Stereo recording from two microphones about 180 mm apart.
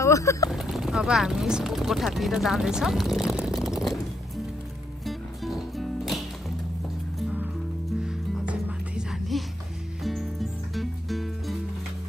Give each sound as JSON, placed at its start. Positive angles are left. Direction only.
{"t": 0.0, "sound": "speech", "side_deg": 15}
{"t": 0.5, "sound": "speech", "side_deg": 0}
{"t": 5.0, "sound": "music", "side_deg": 0}
{"t": 8.0, "sound": "music", "side_deg": -5}